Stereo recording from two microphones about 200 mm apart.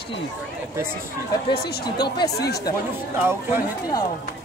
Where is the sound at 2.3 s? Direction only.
55° left (ahead or behind).